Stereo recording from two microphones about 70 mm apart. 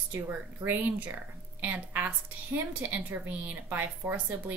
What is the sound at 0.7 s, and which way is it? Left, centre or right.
A woman's voice, right.